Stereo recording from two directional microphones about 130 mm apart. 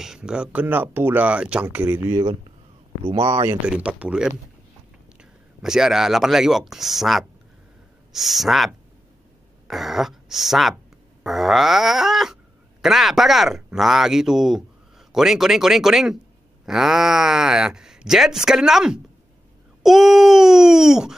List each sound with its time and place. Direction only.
0.0 s speech: 5° right (ahead or behind)
3.1 s speech: 40° right (ahead or behind)
3.6 s speech: 10° right (ahead or behind)
5.6 s speech: 5° right (ahead or behind)